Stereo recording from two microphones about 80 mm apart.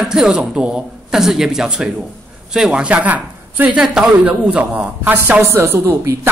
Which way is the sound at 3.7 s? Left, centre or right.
Centre.